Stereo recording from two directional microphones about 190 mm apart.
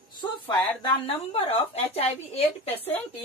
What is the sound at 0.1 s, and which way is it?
A woman's voice, 20° left (ahead or behind).